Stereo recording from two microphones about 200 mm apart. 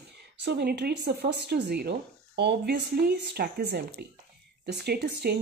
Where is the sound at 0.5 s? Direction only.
55° right (ahead or behind).